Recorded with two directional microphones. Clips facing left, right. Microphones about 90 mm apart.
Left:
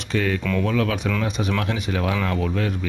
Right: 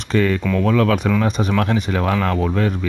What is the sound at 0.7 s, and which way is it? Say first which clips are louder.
Speech: right 9 dB; 45° right (ahead or behind).